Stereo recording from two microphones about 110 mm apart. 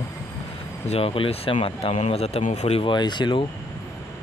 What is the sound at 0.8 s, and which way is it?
Speech, 65° left (ahead or behind).